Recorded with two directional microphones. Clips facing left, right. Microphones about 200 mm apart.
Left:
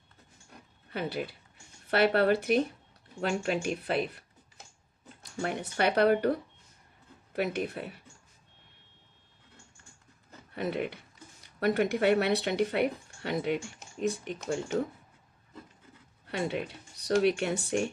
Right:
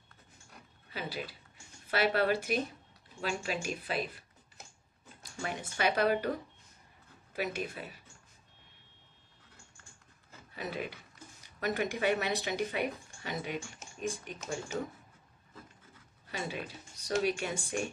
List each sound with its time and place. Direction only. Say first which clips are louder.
0.8 s speech: left 6 dB; 60° left (ahead or behind)
5.2 s speech: left 6 dB; 60° left (ahead or behind)
7.3 s speech: left 5 dB; 60° left (ahead or behind)
10.5 s speech: left 6 dB; 60° left (ahead or behind)
16.3 s speech: left 6 dB; 65° left (ahead or behind)